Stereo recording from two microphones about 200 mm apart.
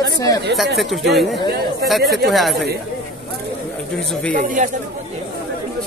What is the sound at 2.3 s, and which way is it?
Speech, centre (ahead or behind).